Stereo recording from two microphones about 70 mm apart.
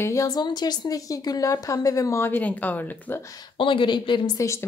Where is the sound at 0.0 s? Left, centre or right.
Left.